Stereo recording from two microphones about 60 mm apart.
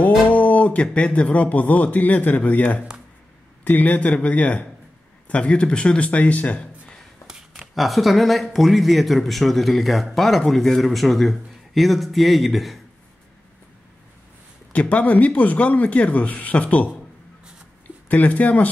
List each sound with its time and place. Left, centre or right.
0.0 s speech: left
7.5 s speech: centre
14.7 s speech: left
18.0 s speech: left